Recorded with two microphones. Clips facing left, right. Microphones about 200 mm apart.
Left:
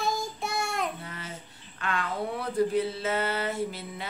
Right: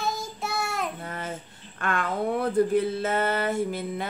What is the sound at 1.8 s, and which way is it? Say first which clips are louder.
Speech: right 4 dB; 50° right (ahead or behind).